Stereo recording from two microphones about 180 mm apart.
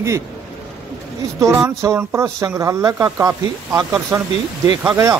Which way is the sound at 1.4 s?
15° right (ahead or behind).